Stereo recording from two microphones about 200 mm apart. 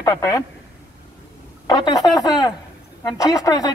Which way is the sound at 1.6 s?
20° left (ahead or behind).